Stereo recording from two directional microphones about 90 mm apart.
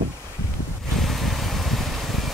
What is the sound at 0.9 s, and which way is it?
Vehicle, centre (ahead or behind).